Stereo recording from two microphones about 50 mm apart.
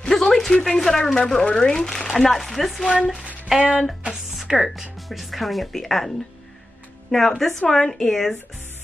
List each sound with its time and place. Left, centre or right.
0.1 s speech: centre
1.4 s speech: centre
2.9 s speech: centre
4.1 s music: centre
5.0 s a woman's voice: centre